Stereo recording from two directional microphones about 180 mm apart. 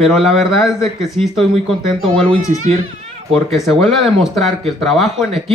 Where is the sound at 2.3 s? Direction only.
40° right (ahead or behind).